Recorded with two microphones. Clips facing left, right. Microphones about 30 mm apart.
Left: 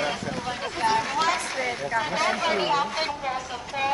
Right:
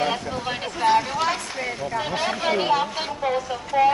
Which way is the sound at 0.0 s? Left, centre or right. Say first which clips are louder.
Right 3 dB; right.